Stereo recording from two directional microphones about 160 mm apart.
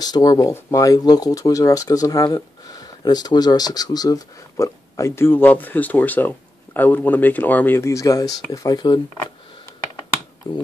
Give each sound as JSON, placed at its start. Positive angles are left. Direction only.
{"t": 0.0, "sound": "speech", "side_deg": 25}
{"t": 10.4, "sound": "speech", "side_deg": 25}